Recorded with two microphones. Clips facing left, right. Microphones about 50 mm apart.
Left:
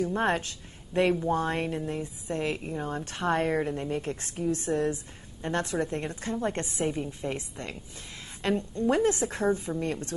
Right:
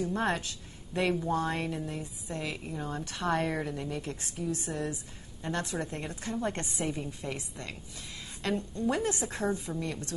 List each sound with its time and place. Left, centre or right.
0.0 s speech: left
6.5 s a woman's voice: left